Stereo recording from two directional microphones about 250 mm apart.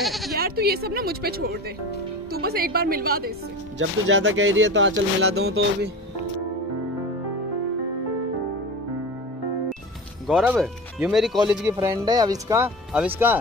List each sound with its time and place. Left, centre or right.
0.0 s bleat: centre
0.4 s a woman's voice: right
10.2 s speech: centre